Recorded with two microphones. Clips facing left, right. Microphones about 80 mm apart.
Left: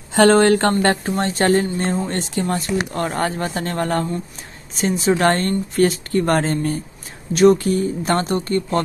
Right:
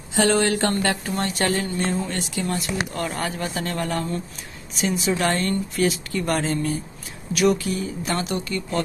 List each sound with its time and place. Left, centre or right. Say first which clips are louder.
0.1 s a woman's voice: left 7 dB; left